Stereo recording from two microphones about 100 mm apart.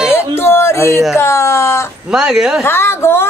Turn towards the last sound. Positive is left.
turn(degrees=25)  # may be behind; listen again after turning